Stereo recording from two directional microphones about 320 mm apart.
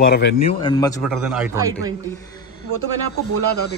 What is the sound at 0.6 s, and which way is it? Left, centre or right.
Speech, centre.